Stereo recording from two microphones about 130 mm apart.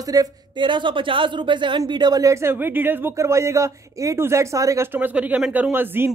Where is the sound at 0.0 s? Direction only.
30° right (ahead or behind).